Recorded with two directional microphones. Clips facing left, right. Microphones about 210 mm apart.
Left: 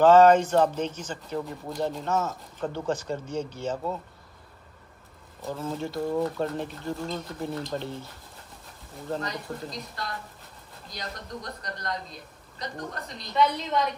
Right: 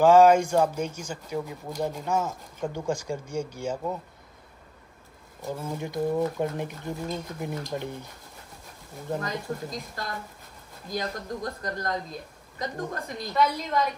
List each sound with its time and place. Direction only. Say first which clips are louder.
0.0 s speech: even; 10° right (ahead or behind)
5.4 s speech: left 1 dB; 15° right (ahead or behind)
9.2 s speech: right 2 dB; 50° right (ahead or behind)
13.3 s a woman's voice: left 1 dB; centre (ahead or behind)